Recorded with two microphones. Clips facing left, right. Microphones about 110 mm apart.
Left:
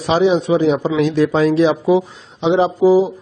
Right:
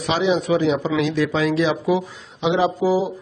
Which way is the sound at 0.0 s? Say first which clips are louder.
Left 5 dB; 30° left (ahead or behind).